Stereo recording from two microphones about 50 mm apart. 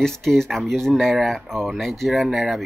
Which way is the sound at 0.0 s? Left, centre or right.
Centre.